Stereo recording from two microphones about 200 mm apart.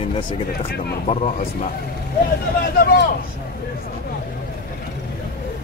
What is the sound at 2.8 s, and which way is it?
Speech, 55° left (ahead or behind).